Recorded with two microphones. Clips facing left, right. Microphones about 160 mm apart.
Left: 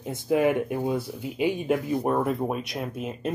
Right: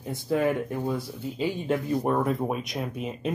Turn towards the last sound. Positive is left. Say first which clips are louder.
# even
turn(degrees=0)  # may be behind; listen again after turning